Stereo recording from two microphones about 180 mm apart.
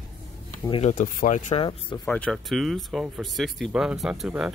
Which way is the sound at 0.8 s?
45° left (ahead or behind).